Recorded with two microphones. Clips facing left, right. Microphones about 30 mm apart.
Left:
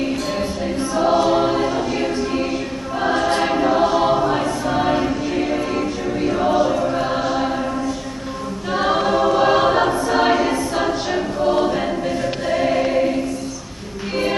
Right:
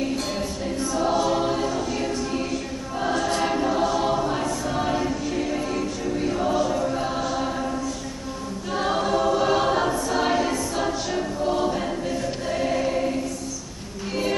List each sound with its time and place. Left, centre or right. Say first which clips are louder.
0.9 s choir: left 6 dB; left
8.7 s choir: left 5 dB; left